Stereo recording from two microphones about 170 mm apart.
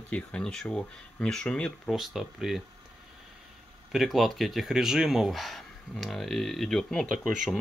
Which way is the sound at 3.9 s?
Centre (ahead or behind).